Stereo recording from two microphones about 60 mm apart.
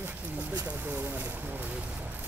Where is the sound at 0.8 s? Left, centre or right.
Right.